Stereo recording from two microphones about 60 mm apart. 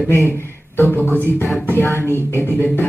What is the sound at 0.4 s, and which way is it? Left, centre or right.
Speech, left.